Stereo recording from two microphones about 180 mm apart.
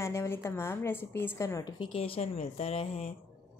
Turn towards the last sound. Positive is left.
turn(degrees=35)  # may be behind; listen again after turning